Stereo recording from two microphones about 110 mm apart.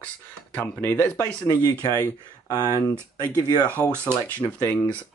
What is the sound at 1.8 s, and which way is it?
Speech, 35° left (ahead or behind).